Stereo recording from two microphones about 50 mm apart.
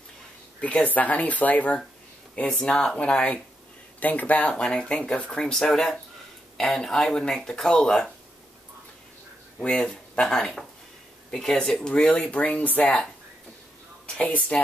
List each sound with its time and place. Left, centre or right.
0.6 s speech: left
2.7 s speech: centre
3.0 s speech: left
5.4 s speech: centre
9.6 s speech: centre; by 12.9 s left
14.5 s speech: left